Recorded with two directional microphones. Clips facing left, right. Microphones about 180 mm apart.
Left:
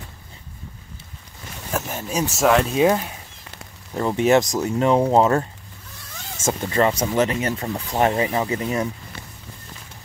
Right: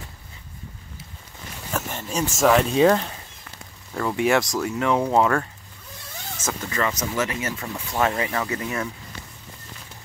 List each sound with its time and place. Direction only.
1.7 s speech: 5° left (ahead or behind)
3.9 s speech: 25° left (ahead or behind)